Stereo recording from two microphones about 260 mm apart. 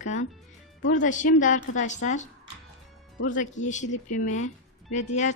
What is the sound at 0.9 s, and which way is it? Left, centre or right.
Speech, left.